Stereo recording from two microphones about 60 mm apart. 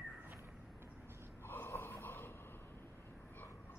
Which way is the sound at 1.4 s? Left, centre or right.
Left.